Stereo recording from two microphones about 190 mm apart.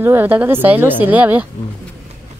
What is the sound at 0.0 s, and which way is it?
Speech, 10° right (ahead or behind).